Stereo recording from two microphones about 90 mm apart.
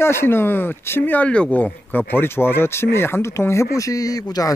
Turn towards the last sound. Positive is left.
turn(degrees=45)  # may be behind; listen again after turning